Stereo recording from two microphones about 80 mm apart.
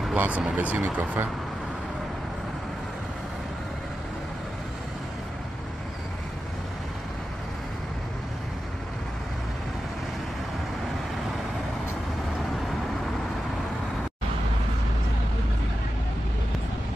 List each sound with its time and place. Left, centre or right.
0.1 s speech: centre